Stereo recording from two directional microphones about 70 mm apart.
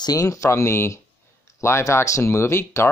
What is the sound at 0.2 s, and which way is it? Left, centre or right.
Speech, left.